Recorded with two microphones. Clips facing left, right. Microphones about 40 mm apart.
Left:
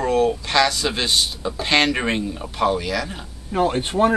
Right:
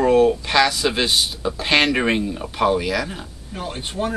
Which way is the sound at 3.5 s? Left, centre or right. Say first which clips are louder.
Left 8 dB; left.